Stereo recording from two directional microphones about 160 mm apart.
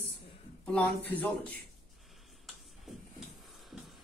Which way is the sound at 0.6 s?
10° left (ahead or behind).